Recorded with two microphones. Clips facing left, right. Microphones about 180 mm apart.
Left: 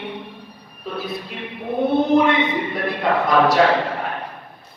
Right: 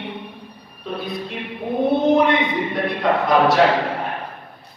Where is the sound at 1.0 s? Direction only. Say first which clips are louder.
Even; centre (ahead or behind).